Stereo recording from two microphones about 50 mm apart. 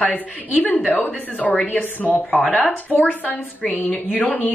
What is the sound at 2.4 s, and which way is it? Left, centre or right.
Speech, centre.